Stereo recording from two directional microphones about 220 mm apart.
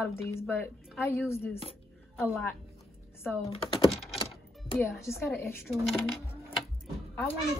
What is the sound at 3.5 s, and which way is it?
Speech, 20° left (ahead or behind).